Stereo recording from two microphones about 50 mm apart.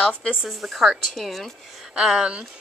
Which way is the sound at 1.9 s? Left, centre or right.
Centre.